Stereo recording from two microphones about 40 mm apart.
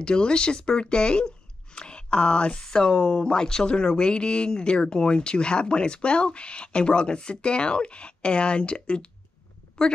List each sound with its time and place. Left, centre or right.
0.0 s speech: left
2.6 s speech: centre